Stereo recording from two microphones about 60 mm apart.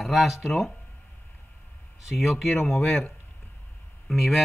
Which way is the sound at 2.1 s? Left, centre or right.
Centre.